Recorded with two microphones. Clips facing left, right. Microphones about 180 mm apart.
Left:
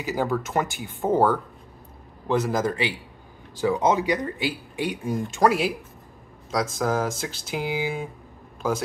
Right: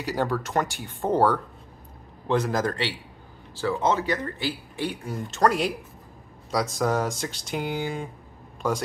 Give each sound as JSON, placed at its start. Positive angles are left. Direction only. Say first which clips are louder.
{"t": 0.0, "sound": "speech", "louder": "left 1 dB", "side_deg": 5}
{"t": 3.5, "sound": "speech", "louder": "left 3 dB", "side_deg": 15}